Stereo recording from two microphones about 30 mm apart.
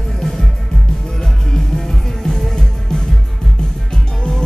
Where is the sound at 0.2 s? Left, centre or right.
Centre.